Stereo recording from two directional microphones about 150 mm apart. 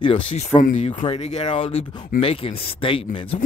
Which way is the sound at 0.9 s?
40° left (ahead or behind).